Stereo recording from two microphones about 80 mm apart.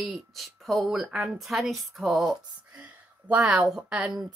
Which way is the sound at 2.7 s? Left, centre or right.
Centre.